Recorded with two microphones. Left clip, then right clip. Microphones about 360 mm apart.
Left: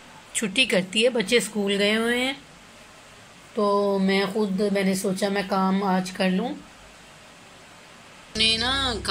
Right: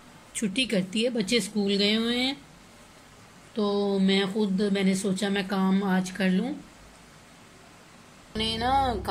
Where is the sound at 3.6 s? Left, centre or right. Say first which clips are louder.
Left 5 dB; left.